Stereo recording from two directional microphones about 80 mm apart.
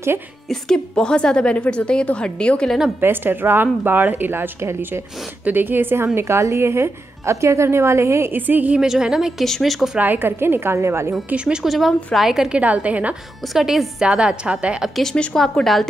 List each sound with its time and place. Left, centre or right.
0.5 s a woman's voice: centre
3.0 s a woman's voice: right
8.4 s a woman's voice: right
8.8 s a woman's voice: centre
9.9 s a woman's voice: right
11.2 s a woman's voice: centre
12.5 s a woman's voice: centre
13.5 s a woman's voice: centre
15.0 s a woman's voice: centre